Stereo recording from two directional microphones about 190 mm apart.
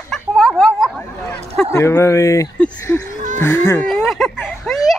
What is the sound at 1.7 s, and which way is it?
Speech, 15° left (ahead or behind).